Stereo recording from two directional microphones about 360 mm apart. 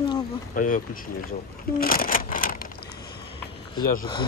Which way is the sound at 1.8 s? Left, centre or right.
Left.